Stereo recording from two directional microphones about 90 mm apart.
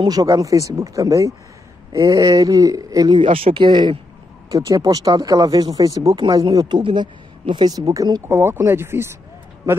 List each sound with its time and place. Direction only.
0.1 s speech: 45° right (ahead or behind)
3.2 s speech: 80° right; by 4.0 s 65° right (ahead or behind)
4.5 s speech: 40° right (ahead or behind)
6.8 s speech: 60° right (ahead or behind); by 8.2 s 45° right (ahead or behind)
8.3 s speech: 30° right (ahead or behind)